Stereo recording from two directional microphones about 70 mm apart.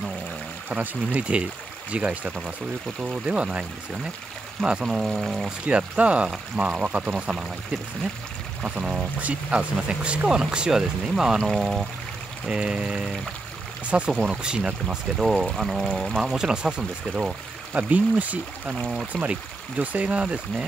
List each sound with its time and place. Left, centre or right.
0.7 s speech: centre
5.7 s speech: centre
8.6 s speech: centre
11.4 s speech: centre
12.4 s speech: centre
19.1 s speech: centre
19.8 s speech: centre